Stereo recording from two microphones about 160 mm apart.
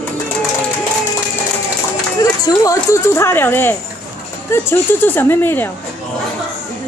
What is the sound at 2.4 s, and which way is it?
Speech, 20° left (ahead or behind).